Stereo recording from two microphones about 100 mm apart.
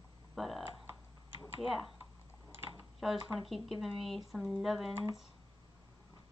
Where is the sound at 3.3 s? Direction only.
Centre (ahead or behind).